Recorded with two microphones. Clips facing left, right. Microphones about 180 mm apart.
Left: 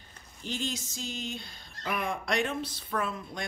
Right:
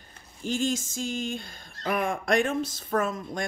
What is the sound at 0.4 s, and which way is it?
Speech, 45° right (ahead or behind).